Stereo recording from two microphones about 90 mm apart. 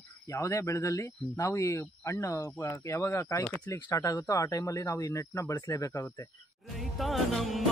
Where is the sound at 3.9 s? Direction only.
35° left (ahead or behind).